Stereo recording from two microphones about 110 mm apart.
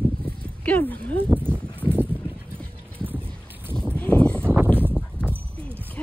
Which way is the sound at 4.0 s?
15° left (ahead or behind).